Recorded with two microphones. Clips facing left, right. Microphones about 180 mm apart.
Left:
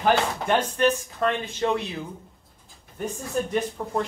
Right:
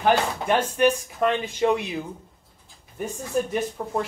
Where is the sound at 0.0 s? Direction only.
10° right (ahead or behind).